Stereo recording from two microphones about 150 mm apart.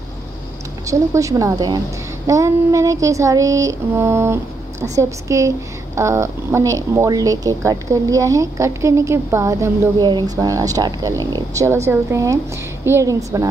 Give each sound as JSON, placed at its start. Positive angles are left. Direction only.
{"t": 0.8, "sound": "speech", "side_deg": -20}